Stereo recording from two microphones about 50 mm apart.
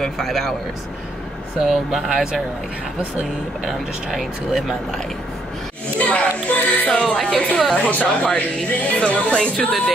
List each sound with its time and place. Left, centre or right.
0.0 s speech: centre
1.6 s speech: centre
3.6 s speech: centre
4.6 s speech: centre
5.9 s music: left
6.9 s music: centre
7.3 s speech: centre
7.9 s speech: left